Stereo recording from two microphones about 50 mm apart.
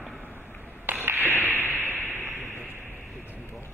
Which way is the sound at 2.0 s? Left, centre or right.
Left.